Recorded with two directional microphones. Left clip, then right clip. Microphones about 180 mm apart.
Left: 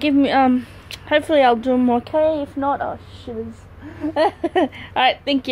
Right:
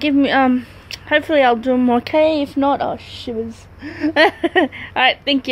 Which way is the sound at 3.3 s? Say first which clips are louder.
Right 4 dB; 30° right (ahead or behind).